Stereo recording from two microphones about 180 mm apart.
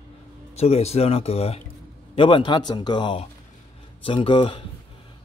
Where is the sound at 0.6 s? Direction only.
35° left (ahead or behind).